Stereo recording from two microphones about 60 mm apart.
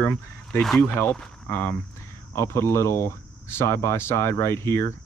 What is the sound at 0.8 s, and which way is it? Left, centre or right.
Speech, left.